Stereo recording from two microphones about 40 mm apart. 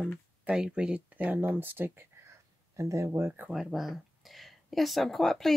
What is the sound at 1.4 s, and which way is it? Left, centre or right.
Speech, right.